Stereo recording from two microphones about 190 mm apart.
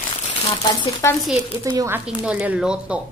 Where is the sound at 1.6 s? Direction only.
15° right (ahead or behind).